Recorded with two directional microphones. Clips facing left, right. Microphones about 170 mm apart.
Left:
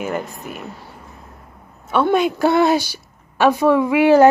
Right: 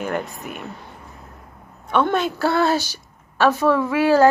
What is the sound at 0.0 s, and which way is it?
Speech, centre (ahead or behind).